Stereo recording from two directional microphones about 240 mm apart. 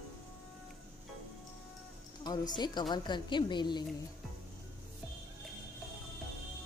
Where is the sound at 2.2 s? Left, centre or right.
Centre.